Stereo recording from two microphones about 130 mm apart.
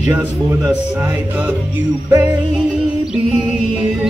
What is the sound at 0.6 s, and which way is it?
Speech, 10° right (ahead or behind).